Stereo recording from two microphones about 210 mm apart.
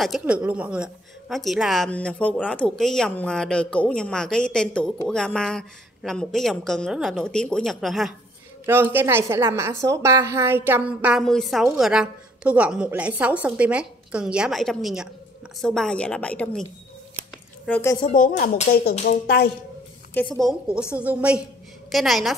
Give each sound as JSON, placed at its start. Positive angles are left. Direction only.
{"t": 0.0, "sound": "a woman's voice", "side_deg": -5}
{"t": 8.6, "sound": "a woman's voice", "side_deg": -10}
{"t": 17.6, "sound": "speech", "side_deg": 5}
{"t": 18.1, "sound": "speech", "side_deg": 40}
{"t": 19.0, "sound": "a woman's voice", "side_deg": 50}
{"t": 20.2, "sound": "a woman's voice", "side_deg": 5}